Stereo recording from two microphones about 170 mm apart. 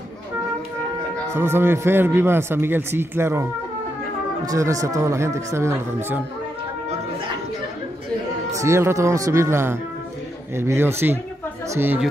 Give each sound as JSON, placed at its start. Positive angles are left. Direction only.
{"t": 1.3, "sound": "a man's voice", "side_deg": -15}
{"t": 4.5, "sound": "a man's voice", "side_deg": -20}
{"t": 8.5, "sound": "a man's voice", "side_deg": -15}